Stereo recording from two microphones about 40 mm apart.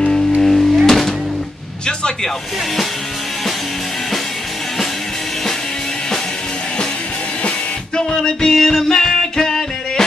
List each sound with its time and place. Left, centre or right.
0.4 s music: centre
7.4 s music: left
8.5 s music: centre